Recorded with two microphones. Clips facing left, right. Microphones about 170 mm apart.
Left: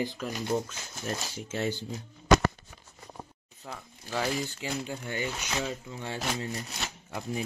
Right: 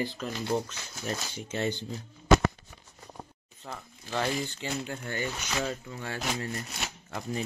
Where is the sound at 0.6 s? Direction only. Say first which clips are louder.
Even; centre (ahead or behind).